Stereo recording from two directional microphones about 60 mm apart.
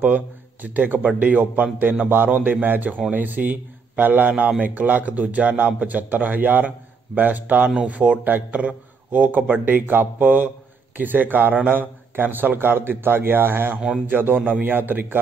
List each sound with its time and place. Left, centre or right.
0.0 s a man's voice: right